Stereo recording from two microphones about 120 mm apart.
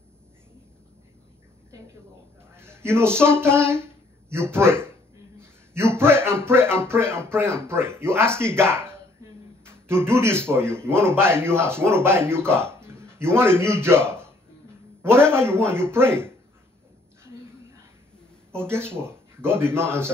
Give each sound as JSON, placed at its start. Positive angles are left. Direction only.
{"t": 2.5, "sound": "a sound", "side_deg": -20}
{"t": 3.2, "sound": "speech", "side_deg": -20}
{"t": 5.9, "sound": "speech", "side_deg": -20}
{"t": 10.0, "sound": "a man's voice", "side_deg": -20}
{"t": 18.6, "sound": "speech", "side_deg": -20}